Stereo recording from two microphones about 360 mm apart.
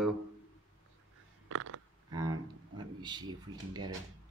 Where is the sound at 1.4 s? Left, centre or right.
Right.